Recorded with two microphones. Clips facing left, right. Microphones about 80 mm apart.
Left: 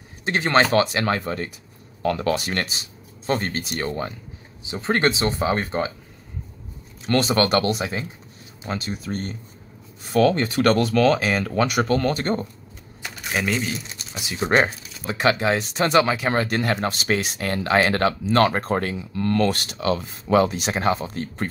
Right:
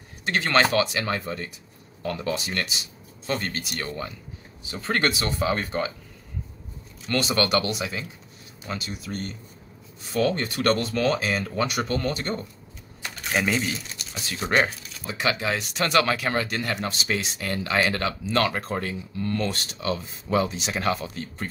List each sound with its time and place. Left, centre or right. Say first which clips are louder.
0.2 s speech: left 2 dB; left
1.0 s speech: left 5 dB; left
4.6 s speech: left 4 dB; left
7.1 s speech: left 4 dB; left
10.2 s speech: left 4 dB; left
13.0 s crumpling: even; centre
14.1 s speech: left 4 dB; centre
15.0 s speech: left 6 dB; left
16.3 s speech: left 5 dB; left
18.8 s speech: left 4 dB; left
20.7 s speech: left 1 dB; left
21.1 s speech: left 5 dB; left